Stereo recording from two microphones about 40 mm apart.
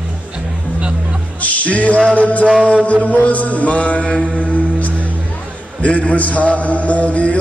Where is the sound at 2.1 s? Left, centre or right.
Left.